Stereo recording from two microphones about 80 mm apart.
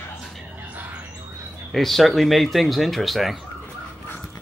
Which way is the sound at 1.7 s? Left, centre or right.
Centre.